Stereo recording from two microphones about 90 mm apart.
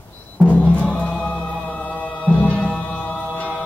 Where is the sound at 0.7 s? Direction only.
15° left (ahead or behind).